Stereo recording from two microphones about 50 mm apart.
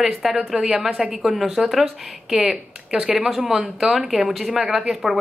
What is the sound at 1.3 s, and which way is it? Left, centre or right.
A woman's voice, centre.